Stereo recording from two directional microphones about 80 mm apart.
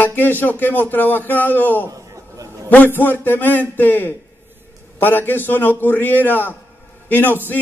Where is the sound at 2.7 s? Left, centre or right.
Left.